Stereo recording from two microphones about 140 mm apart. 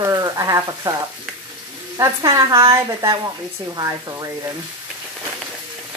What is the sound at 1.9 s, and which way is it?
Speech, 25° right (ahead or behind).